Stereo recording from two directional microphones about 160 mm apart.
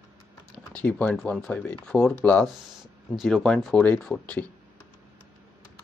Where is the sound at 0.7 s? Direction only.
10° left (ahead or behind).